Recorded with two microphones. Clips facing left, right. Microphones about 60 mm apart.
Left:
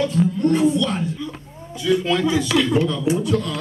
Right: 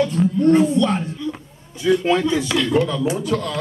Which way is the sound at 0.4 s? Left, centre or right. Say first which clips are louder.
Right 4 dB; right.